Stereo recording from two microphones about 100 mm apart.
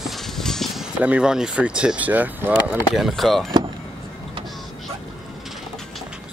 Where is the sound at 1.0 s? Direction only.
10° right (ahead or behind).